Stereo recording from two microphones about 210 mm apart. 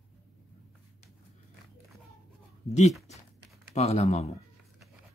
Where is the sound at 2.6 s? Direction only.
35° left (ahead or behind).